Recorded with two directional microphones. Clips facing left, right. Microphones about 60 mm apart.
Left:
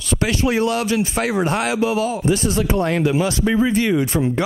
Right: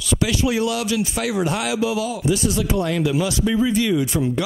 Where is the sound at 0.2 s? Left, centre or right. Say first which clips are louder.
Left 3 dB; left.